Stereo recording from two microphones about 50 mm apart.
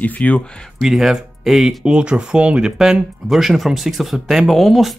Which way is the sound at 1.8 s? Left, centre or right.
Right.